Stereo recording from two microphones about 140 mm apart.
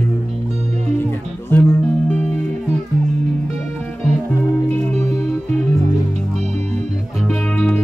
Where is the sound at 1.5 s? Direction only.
15° left (ahead or behind).